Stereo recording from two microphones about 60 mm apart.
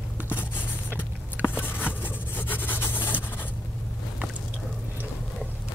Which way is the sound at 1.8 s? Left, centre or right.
Left.